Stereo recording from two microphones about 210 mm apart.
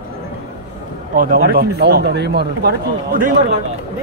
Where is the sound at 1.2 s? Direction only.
45° right (ahead or behind).